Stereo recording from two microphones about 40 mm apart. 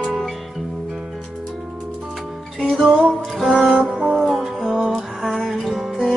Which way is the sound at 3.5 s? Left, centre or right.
Centre.